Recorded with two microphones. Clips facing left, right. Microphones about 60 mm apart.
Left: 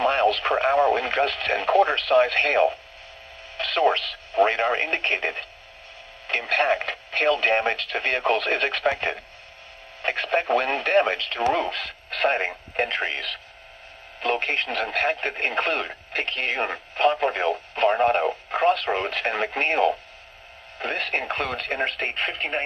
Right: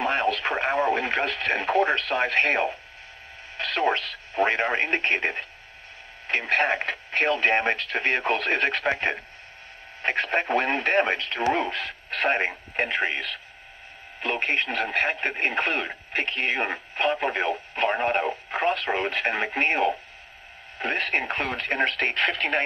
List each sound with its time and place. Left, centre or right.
0.0 s speech: right
20.8 s speech: right
21.8 s speech: right